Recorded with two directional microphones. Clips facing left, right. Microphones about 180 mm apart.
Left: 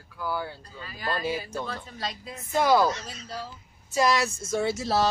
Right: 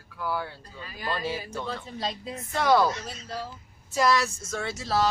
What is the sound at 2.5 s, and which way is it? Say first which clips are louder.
Speech: left 1 dB; 5° left (ahead or behind).